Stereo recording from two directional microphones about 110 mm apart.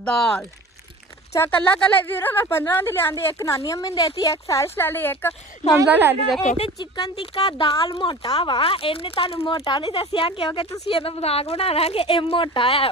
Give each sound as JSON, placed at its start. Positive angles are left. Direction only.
{"t": 0.0, "sound": "speech", "side_deg": 5}
{"t": 1.6, "sound": "speech", "side_deg": 10}
{"t": 5.6, "sound": "speech", "side_deg": 85}
{"t": 6.8, "sound": "speech", "side_deg": 40}
{"t": 8.5, "sound": "a woman's voice", "side_deg": 55}
{"t": 9.7, "sound": "a woman's voice", "side_deg": 45}